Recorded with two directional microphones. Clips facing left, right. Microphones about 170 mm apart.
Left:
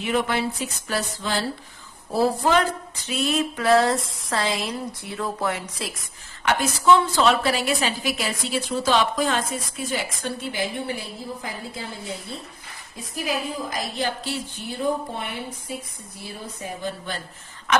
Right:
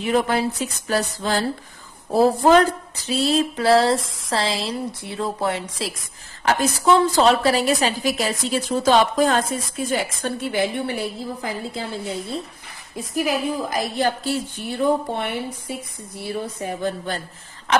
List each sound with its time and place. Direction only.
0.0 s a woman's voice: 40° right (ahead or behind); by 11.1 s 55° right (ahead or behind)
13.1 s a woman's voice: 60° right (ahead or behind)
16.8 s a woman's voice: 45° right (ahead or behind)